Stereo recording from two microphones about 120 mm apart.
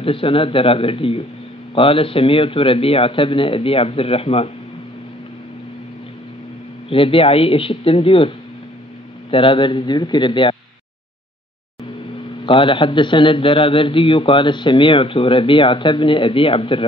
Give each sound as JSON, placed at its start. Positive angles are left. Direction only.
{"t": 0.0, "sound": "a man's voice", "side_deg": 50}
{"t": 6.9, "sound": "a man's voice", "side_deg": 50}
{"t": 9.3, "sound": "a man's voice", "side_deg": 45}
{"t": 12.4, "sound": "a man's voice", "side_deg": 45}